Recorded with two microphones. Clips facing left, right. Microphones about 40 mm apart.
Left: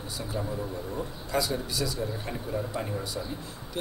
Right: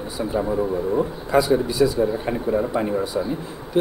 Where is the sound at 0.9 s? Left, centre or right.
Right.